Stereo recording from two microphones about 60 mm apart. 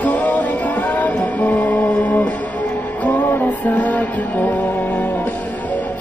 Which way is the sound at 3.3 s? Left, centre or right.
Left.